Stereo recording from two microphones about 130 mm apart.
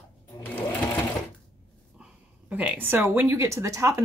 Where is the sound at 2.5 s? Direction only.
10° right (ahead or behind).